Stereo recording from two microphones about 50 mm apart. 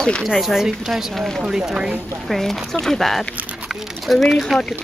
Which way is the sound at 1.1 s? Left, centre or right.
Centre.